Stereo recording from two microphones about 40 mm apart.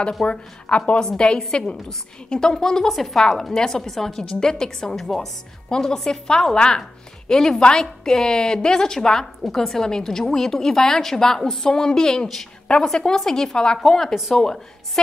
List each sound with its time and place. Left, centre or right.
0.2 s speech: left
2.9 s a woman's voice: centre